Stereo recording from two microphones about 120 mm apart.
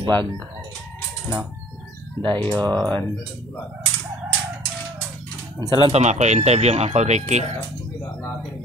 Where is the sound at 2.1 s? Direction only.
40° right (ahead or behind).